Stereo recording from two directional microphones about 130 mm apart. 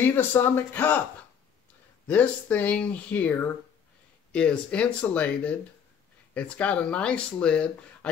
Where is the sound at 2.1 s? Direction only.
10° left (ahead or behind).